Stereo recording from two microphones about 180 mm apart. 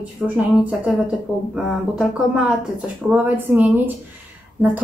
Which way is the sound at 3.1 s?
10° right (ahead or behind).